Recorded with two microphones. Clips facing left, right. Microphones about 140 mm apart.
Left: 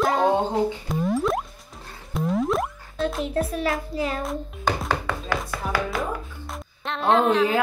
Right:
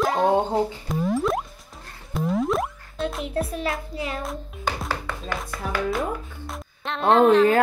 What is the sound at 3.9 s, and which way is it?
Music, 35° left (ahead or behind).